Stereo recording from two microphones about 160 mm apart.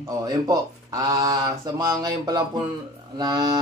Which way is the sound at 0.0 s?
20° right (ahead or behind).